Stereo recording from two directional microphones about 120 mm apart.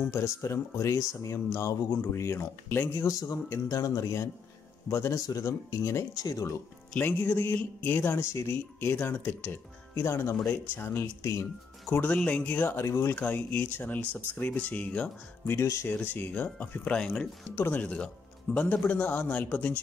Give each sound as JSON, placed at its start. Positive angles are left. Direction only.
{"t": 0.1, "sound": "speech", "side_deg": 25}
{"t": 7.0, "sound": "speech", "side_deg": 15}
{"t": 15.6, "sound": "speech", "side_deg": 25}
{"t": 17.5, "sound": "speech", "side_deg": 20}